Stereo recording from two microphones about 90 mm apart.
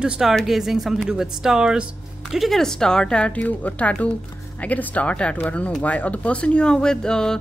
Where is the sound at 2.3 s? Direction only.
Centre (ahead or behind).